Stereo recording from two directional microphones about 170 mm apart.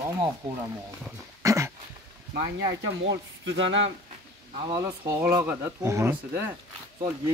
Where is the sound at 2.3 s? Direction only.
85° right.